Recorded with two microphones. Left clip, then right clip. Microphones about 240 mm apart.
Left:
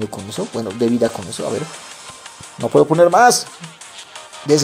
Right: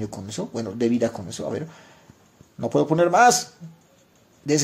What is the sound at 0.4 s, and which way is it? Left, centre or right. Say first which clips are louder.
Speech: left 6 dB; centre.